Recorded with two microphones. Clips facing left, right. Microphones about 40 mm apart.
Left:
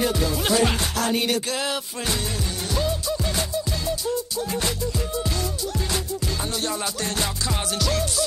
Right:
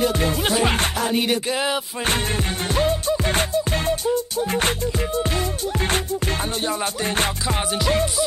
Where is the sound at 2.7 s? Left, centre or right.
Right.